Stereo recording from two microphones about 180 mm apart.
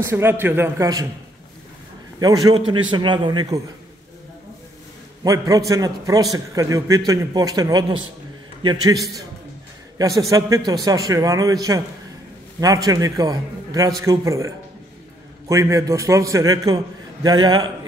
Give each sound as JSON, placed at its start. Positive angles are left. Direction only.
{"t": 0.0, "sound": "a man's voice", "side_deg": -15}
{"t": 2.1, "sound": "a man's voice", "side_deg": -20}
{"t": 5.2, "sound": "a man's voice", "side_deg": -20}
{"t": 9.9, "sound": "a man's voice", "side_deg": -20}